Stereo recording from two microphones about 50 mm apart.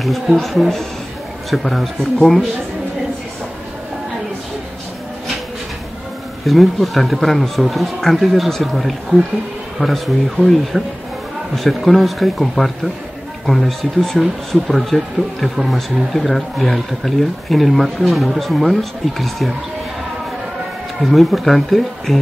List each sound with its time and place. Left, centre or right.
0.0 s speech: centre
6.4 s speech: centre
21.0 s speech: centre